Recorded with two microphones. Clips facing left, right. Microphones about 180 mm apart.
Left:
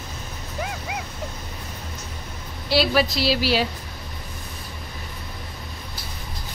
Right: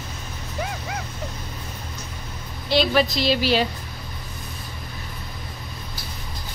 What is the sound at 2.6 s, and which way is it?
A woman's voice, 5° left (ahead or behind).